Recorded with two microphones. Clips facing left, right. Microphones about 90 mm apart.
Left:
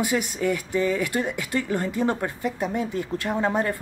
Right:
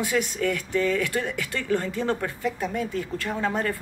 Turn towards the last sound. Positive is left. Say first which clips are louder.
# left 3 dB
turn(degrees=15)  # may be behind; listen again after turning